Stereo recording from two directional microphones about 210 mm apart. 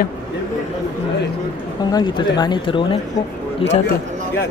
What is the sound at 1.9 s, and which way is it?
Speech, 20° left (ahead or behind).